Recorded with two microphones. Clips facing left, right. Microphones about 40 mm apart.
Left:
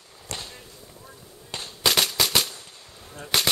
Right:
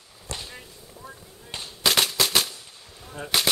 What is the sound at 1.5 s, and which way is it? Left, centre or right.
Firecracker, centre.